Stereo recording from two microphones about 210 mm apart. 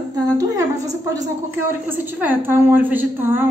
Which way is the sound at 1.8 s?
10° right (ahead or behind).